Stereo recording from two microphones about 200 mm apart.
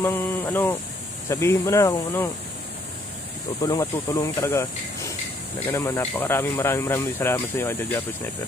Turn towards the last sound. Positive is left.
turn(degrees=10)  # may be behind; listen again after turning